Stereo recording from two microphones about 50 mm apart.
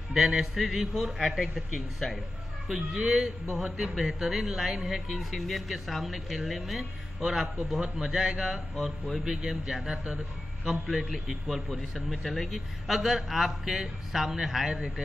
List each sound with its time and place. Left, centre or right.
0.1 s speech: centre